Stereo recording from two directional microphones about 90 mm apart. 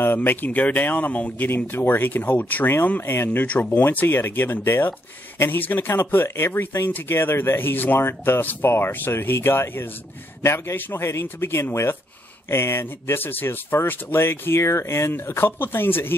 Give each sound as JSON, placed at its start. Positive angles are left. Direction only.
{"t": 0.0, "sound": "speech", "side_deg": 25}